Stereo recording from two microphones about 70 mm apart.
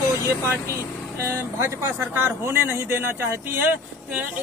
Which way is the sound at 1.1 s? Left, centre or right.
Right.